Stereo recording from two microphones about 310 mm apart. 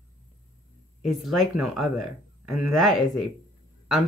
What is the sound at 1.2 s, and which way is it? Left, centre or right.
Speech, centre.